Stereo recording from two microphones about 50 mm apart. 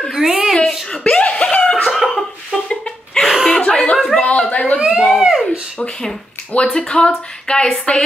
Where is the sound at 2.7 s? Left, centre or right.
Centre.